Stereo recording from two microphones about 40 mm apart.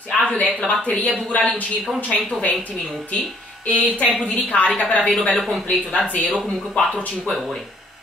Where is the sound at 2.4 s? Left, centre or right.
Left.